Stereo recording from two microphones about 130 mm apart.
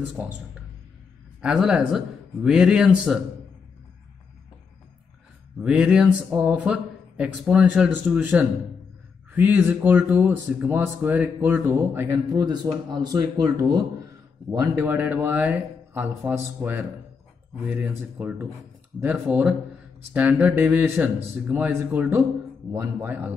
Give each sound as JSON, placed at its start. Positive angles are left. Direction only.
{"t": 0.2, "sound": "speech", "side_deg": -15}
{"t": 1.4, "sound": "a man's voice", "side_deg": -5}
{"t": 5.6, "sound": "speech", "side_deg": -10}
{"t": 14.5, "sound": "speech", "side_deg": -15}